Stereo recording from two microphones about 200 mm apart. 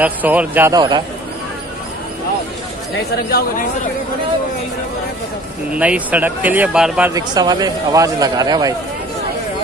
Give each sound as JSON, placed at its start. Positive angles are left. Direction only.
{"t": 0.0, "sound": "speech", "side_deg": -5}
{"t": 3.3, "sound": "speech", "side_deg": 50}
{"t": 5.8, "sound": "speech", "side_deg": -5}
{"t": 7.2, "sound": "speech", "side_deg": -20}